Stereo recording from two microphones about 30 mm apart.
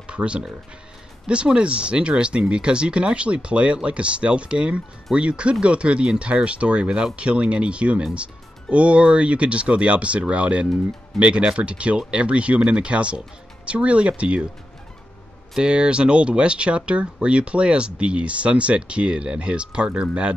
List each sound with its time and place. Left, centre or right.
0.0 s a sound: right
1.2 s speech: right
11.1 s speech: right
15.6 s speech: right